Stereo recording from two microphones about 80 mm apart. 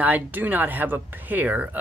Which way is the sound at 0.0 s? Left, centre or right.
Right.